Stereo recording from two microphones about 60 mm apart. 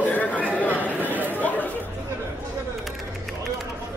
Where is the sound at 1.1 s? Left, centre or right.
Right.